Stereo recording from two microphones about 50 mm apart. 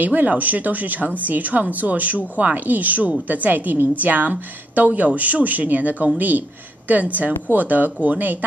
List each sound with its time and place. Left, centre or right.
0.0 s a woman's voice: right